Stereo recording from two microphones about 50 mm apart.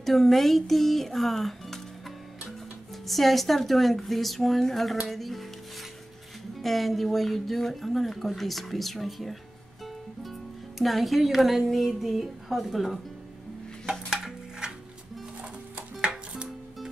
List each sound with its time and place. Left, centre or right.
0.0 s speech: centre
3.1 s speech: centre
6.6 s speech: centre
10.8 s speech: centre
13.8 s dishes: centre